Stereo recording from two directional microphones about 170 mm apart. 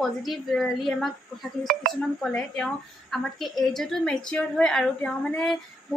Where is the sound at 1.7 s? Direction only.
60° right (ahead or behind).